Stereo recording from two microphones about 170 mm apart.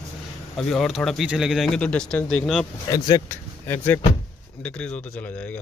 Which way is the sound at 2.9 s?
25° left (ahead or behind).